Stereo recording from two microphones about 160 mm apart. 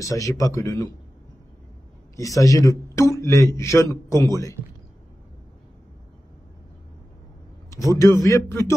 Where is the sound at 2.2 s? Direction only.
20° left (ahead or behind).